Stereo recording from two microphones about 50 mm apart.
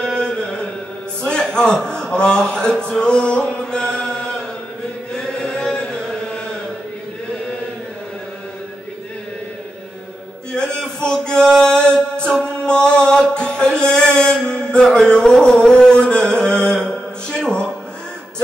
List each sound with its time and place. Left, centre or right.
0.0 s chant: centre
1.2 s a man's voice: centre
3.0 s chant: centre
10.5 s male singing: centre